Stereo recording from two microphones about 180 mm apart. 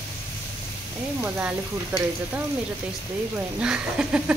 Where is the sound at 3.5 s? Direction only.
5° right (ahead or behind).